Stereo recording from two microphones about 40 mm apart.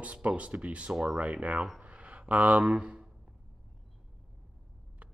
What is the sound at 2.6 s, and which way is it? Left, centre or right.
Speech, right.